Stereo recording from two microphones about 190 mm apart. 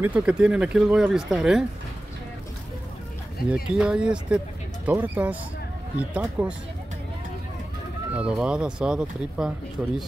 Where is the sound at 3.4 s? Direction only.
55° left (ahead or behind).